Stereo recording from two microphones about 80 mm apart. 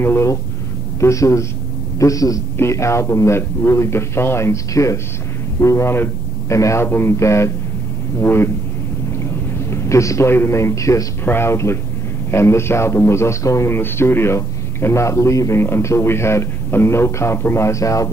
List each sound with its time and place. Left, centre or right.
0.0 s a man's voice: left
2.5 s a man's voice: left